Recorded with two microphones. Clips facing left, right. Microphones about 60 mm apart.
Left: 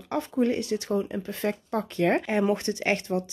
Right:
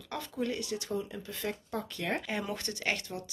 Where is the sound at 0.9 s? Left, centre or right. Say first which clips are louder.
Left 8 dB; left.